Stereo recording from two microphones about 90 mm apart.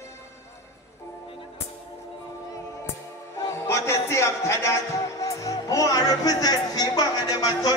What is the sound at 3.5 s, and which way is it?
A man's voice, 30° left (ahead or behind).